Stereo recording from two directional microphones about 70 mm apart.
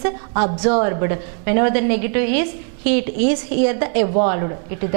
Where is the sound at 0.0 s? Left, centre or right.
Centre.